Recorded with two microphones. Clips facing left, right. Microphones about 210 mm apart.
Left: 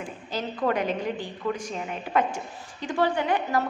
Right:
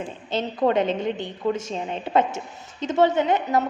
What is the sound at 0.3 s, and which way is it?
A woman's voice, 25° right (ahead or behind).